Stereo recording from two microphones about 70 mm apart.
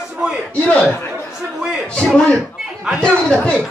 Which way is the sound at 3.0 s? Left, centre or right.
Centre.